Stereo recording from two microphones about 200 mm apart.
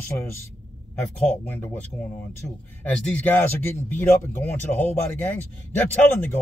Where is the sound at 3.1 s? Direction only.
10° left (ahead or behind).